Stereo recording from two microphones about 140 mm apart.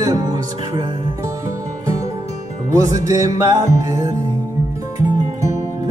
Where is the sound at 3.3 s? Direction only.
25° right (ahead or behind).